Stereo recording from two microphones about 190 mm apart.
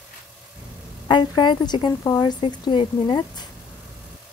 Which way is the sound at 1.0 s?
25° left (ahead or behind).